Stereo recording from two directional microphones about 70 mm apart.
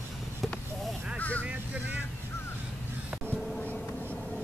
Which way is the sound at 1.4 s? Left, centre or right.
Centre.